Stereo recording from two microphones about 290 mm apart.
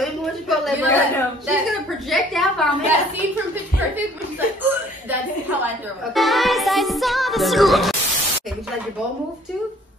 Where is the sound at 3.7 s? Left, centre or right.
Left.